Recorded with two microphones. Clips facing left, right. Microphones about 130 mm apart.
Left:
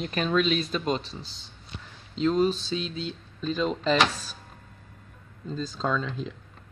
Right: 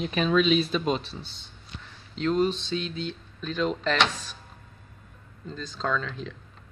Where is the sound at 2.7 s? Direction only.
15° left (ahead or behind).